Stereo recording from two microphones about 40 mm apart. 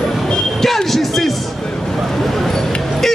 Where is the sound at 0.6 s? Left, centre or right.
Centre.